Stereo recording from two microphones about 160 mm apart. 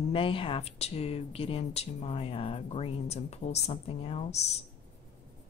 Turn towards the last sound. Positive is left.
turn(degrees=45)  # may be behind; listen again after turning